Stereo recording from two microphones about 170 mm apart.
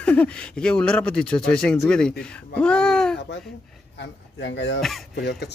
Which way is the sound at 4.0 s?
90° left.